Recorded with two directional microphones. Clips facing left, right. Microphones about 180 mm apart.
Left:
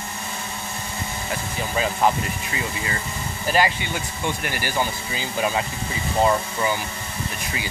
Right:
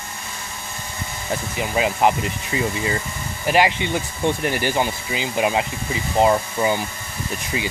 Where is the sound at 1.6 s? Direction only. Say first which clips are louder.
Right 2 dB; 15° right (ahead or behind).